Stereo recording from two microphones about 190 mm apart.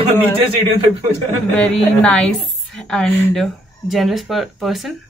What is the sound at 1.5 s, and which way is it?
Speech, 5° left (ahead or behind).